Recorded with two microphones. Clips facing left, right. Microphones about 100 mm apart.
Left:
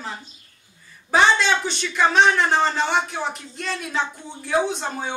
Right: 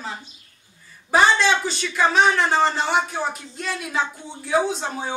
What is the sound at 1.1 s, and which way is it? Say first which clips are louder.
A man's voice: right 1 dB; 5° right (ahead or behind).